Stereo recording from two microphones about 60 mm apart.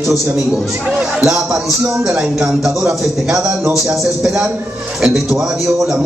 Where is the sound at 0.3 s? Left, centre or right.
Centre.